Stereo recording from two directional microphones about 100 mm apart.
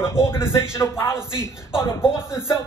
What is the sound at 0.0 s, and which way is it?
Speech, 25° left (ahead or behind).